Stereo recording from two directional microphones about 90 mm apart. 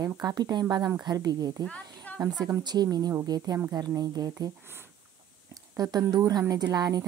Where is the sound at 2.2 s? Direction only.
50° right (ahead or behind).